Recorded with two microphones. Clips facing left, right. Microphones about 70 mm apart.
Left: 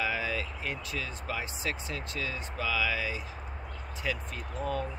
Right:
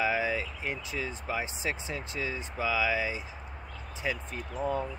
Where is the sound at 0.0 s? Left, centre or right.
Centre.